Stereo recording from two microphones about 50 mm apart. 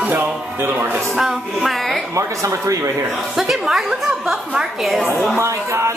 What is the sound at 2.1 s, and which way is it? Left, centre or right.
Speech, right.